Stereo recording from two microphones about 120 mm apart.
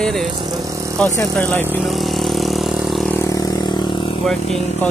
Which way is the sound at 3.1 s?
25° left (ahead or behind).